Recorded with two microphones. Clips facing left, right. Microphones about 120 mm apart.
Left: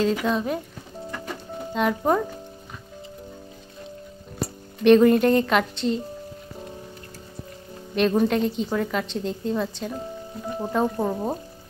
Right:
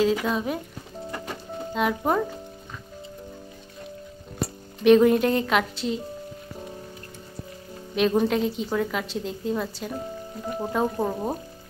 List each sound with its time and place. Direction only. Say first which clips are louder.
0.3 s a woman's voice: left 2 dB; 5° right (ahead or behind)
1.7 s a woman's voice: left 2 dB; 5° right (ahead or behind)
4.8 s a woman's voice: left 1 dB; 5° right (ahead or behind)
7.9 s a woman's voice: left 1 dB; 5° right (ahead or behind)